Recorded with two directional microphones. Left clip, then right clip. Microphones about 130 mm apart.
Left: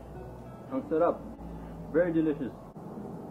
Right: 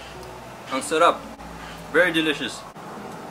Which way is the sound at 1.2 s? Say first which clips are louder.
Right 8 dB; 30° left (ahead or behind).